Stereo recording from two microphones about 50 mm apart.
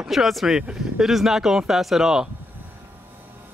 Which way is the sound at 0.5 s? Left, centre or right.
Centre.